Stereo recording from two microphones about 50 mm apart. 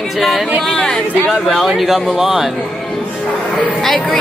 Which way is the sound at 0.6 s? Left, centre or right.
Centre.